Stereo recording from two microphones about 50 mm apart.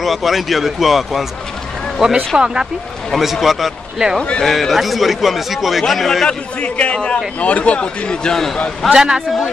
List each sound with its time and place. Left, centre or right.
0.0 s a man's voice: centre
3.1 s a man's voice: centre
6.2 s a man's voice: centre
7.3 s a man's voice: left; by 8.5 s centre
8.9 s a man's voice: centre